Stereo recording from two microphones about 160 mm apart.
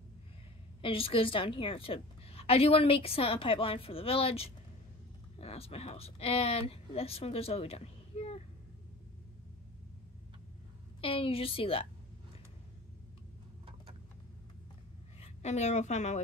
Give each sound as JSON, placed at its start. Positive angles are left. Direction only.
{"t": 0.8, "sound": "a woman's voice", "side_deg": 35}
{"t": 11.0, "sound": "a woman's voice", "side_deg": 35}
{"t": 15.1, "sound": "a woman's voice", "side_deg": 45}